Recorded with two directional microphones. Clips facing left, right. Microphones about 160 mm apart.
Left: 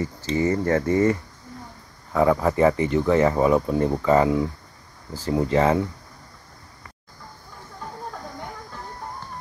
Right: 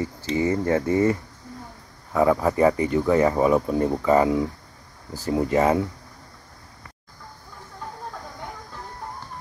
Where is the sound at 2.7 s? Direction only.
25° left (ahead or behind).